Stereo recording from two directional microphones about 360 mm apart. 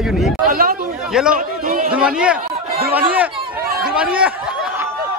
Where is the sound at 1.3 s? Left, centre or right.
Right.